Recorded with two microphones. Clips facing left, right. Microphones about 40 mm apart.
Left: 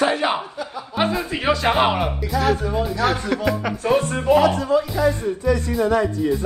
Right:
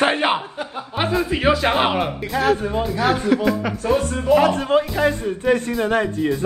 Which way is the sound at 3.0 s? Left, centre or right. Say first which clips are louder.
Right 4 dB; centre.